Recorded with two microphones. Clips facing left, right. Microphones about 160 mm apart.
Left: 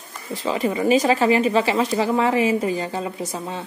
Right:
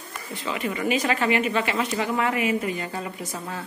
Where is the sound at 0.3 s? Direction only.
35° left (ahead or behind).